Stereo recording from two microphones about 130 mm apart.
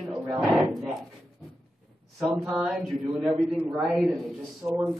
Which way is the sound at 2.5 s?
Centre (ahead or behind).